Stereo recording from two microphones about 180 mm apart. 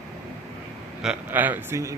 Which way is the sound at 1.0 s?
5° right (ahead or behind).